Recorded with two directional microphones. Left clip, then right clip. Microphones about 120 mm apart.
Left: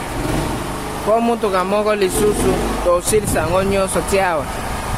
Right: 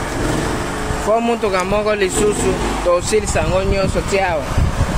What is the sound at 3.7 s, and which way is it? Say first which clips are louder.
Speech: left 1 dB; 35° left (ahead or behind).